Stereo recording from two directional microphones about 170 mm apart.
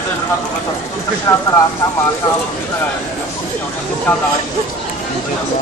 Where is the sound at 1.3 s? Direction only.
15° left (ahead or behind).